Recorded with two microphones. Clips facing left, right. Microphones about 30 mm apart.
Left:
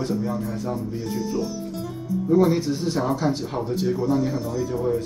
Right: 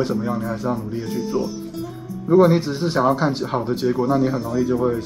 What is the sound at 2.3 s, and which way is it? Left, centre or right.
Speech, right.